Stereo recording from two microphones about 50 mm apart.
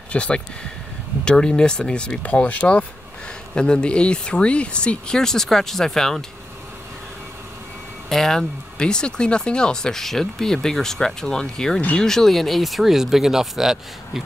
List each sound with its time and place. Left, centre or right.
0.1 s speech: left
2.2 s speech: left; by 6.2 s centre
8.1 s speech: centre